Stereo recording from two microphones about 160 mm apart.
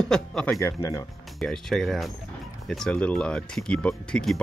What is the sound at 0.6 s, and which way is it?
Speech, 20° left (ahead or behind).